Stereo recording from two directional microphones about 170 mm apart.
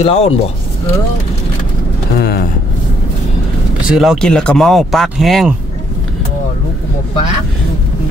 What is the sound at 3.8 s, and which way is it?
Speech, 5° right (ahead or behind).